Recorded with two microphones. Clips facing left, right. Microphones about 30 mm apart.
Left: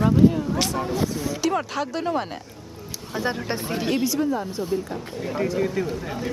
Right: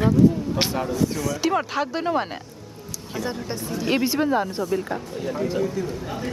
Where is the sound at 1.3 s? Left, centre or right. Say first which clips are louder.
Right 1 dB; centre.